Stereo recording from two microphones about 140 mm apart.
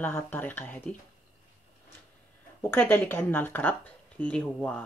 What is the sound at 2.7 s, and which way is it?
Speech, 15° left (ahead or behind).